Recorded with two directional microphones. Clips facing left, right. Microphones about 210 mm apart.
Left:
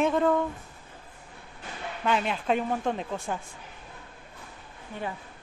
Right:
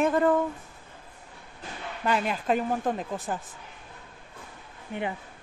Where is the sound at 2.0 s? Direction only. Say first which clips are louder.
Even; centre (ahead or behind).